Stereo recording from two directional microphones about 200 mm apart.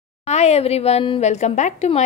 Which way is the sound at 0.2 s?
35° left (ahead or behind).